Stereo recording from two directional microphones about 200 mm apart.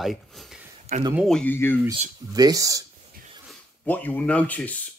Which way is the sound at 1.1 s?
Centre (ahead or behind).